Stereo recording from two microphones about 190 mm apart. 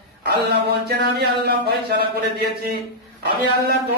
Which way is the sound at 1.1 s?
55° right (ahead or behind).